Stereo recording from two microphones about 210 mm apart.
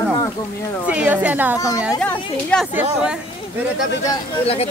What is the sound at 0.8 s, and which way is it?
Speech, 5° right (ahead or behind).